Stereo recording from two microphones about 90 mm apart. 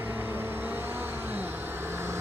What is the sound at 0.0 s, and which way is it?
Vehicle, 25° right (ahead or behind).